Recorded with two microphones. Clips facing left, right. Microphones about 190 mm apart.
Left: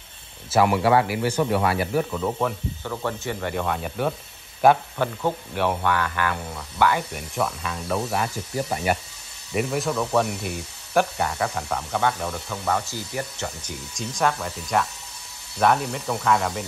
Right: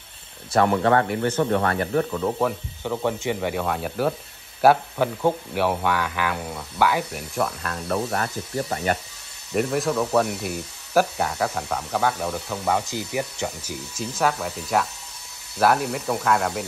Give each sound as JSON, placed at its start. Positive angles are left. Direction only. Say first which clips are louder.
{"t": 0.5, "sound": "speech", "louder": "even", "side_deg": 5}
{"t": 2.4, "sound": "speech", "louder": "right 3 dB", "side_deg": -5}
{"t": 2.8, "sound": "speech", "louder": "right 5 dB", "side_deg": -15}
{"t": 9.5, "sound": "speech", "louder": "right 2 dB", "side_deg": 0}